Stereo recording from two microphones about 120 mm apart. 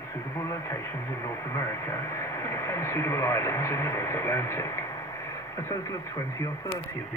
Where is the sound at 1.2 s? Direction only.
25° left (ahead or behind).